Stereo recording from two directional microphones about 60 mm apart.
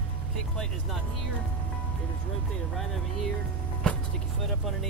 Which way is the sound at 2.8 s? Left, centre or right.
Centre.